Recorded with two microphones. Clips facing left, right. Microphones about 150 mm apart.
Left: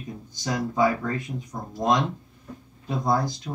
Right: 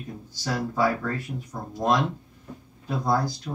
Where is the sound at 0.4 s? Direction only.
20° left (ahead or behind).